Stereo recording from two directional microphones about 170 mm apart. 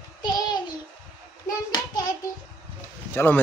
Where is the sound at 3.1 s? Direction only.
10° left (ahead or behind).